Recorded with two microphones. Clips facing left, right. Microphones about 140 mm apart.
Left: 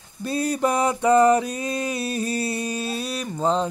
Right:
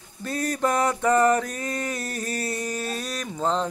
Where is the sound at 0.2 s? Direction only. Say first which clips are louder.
Left 3 dB; 15° left (ahead or behind).